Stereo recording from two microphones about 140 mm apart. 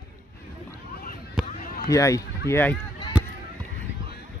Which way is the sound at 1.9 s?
25° left (ahead or behind).